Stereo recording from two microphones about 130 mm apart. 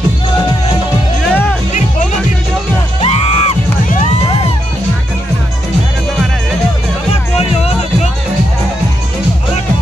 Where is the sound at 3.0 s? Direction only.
50° left (ahead or behind).